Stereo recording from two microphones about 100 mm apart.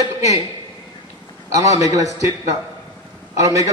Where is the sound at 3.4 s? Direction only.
35° right (ahead or behind).